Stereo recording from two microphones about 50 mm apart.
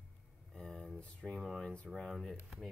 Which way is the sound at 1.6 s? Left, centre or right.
Left.